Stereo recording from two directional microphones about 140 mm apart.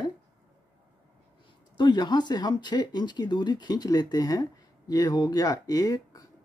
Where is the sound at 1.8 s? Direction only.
30° left (ahead or behind).